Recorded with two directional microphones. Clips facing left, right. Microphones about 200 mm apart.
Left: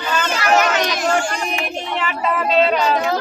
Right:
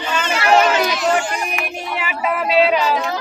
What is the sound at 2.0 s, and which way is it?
Speech, 10° right (ahead or behind).